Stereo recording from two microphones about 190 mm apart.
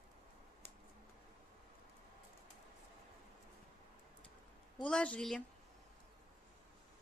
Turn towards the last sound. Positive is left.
turn(degrees=5)  # may be behind; listen again after turning